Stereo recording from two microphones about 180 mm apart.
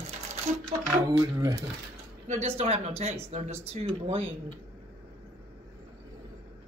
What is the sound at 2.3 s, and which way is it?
Speech, 35° right (ahead or behind).